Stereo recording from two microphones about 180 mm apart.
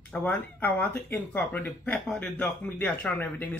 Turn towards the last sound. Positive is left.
turn(degrees=10)  # may be behind; listen again after turning